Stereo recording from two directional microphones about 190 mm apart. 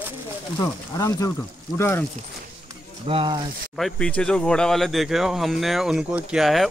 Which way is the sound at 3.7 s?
5° left (ahead or behind).